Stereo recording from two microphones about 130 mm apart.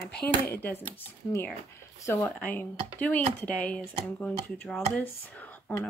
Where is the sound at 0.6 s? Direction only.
15° left (ahead or behind).